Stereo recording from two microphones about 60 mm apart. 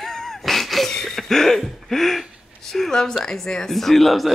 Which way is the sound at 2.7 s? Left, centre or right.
Centre.